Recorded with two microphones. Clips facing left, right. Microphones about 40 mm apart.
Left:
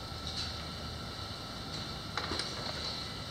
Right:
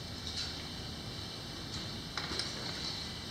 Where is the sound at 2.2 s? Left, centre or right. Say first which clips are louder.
Left 3 dB; centre.